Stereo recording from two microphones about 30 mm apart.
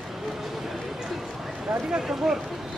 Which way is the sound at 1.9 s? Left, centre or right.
Right.